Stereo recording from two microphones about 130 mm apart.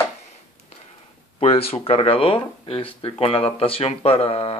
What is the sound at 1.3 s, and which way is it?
Speech, 50° left (ahead or behind).